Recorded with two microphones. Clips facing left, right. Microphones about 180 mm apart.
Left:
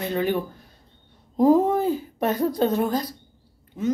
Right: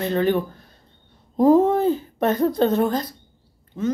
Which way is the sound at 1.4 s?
10° left (ahead or behind).